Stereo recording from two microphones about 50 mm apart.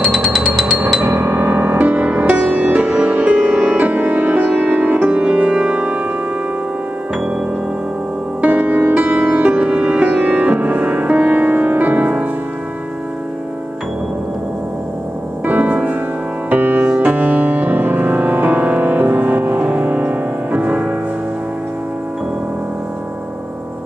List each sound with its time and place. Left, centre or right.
0.9 s music: right
1.2 s music: right
1.8 s music: right
5.1 s music: right
8.4 s music: right
15.4 s music: right